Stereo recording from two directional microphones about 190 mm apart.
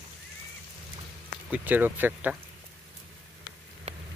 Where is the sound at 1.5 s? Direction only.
10° right (ahead or behind).